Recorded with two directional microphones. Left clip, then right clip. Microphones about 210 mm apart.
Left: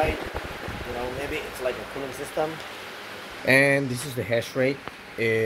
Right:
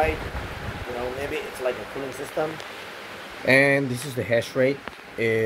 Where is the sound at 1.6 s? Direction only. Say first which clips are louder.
Right 2 dB; 15° left (ahead or behind).